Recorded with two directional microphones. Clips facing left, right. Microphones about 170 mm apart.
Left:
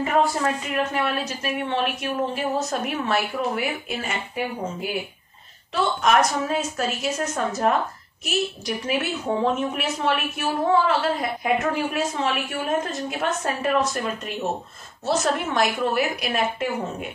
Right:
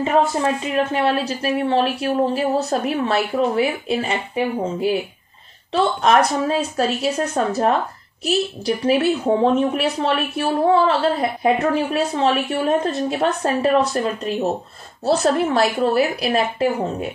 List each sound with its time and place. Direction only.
0.0 s a woman's voice: 25° right (ahead or behind)
5.7 s a woman's voice: 30° right (ahead or behind)